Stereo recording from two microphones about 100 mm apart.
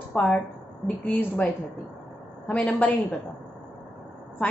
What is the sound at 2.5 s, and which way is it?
Speech, 10° left (ahead or behind).